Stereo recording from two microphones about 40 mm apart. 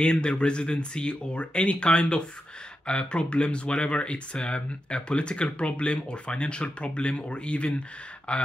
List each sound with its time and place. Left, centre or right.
0.0 s speech: left